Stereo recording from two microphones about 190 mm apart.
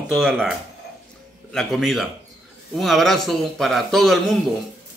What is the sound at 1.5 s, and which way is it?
A man's voice, centre (ahead or behind).